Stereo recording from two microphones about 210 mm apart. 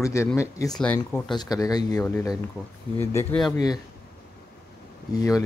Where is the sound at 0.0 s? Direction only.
15° left (ahead or behind).